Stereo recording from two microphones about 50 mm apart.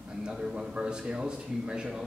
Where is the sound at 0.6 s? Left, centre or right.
Centre.